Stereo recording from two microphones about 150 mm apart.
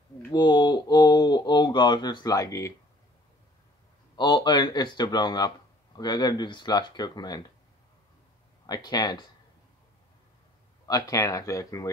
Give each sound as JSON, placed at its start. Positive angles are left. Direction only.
{"t": 0.3, "sound": "speech", "side_deg": 30}
{"t": 4.2, "sound": "speech", "side_deg": 30}
{"t": 8.6, "sound": "speech", "side_deg": 30}
{"t": 10.9, "sound": "speech", "side_deg": 25}